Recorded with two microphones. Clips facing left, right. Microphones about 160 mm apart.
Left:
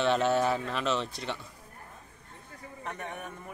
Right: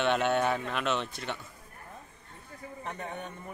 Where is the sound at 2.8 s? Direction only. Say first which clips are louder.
Even; 30° right (ahead or behind).